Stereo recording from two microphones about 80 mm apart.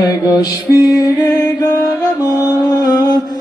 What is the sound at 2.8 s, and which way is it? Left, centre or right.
Mantra, left.